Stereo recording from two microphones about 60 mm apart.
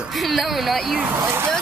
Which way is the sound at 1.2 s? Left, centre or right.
Right.